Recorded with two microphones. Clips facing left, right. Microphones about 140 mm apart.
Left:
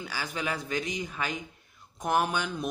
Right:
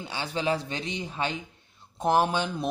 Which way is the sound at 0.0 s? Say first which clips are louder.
Right 4 dB; 25° right (ahead or behind).